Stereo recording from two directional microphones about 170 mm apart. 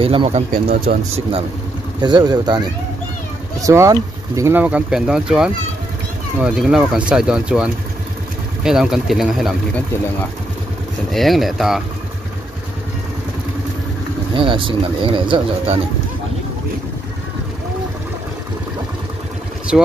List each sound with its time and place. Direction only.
0.0 s speech: 35° right (ahead or behind)
0.5 s speech: 60° right (ahead or behind)
2.0 s speech: 25° right (ahead or behind); by 9.6 s centre (ahead or behind)
11.1 s speech: centre (ahead or behind)
14.3 s speech: 30° right (ahead or behind)
19.7 s speech: 5° right (ahead or behind)